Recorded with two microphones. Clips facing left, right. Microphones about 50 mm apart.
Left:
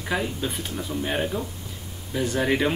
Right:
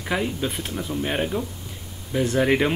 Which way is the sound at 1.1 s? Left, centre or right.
Centre.